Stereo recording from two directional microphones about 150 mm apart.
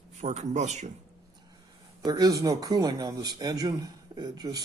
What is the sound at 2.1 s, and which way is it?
A man's voice, 25° right (ahead or behind).